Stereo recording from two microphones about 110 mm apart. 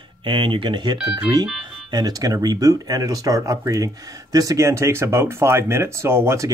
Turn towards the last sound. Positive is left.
turn(degrees=-25)  # may be behind; listen again after turning